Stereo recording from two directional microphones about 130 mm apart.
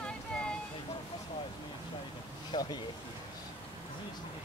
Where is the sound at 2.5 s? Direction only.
30° left (ahead or behind).